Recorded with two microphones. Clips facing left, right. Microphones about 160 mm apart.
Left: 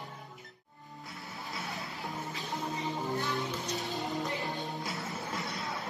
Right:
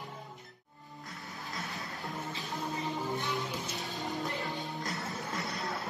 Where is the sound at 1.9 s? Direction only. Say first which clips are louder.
Even; 20° left (ahead or behind).